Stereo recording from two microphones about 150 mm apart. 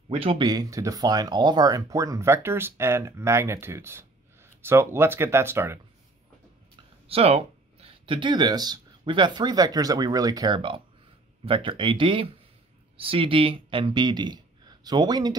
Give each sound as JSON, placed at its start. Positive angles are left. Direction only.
{"t": 0.1, "sound": "speech", "side_deg": -40}
{"t": 0.5, "sound": "speech", "side_deg": -25}
{"t": 7.1, "sound": "speech", "side_deg": -40}